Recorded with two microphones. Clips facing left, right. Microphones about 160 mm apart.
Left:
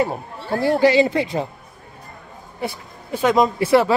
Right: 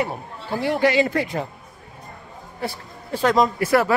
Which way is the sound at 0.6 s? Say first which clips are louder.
Left 4 dB; 35° left (ahead or behind).